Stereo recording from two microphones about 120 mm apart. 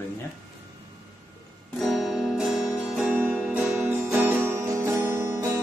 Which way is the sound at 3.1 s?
15° right (ahead or behind).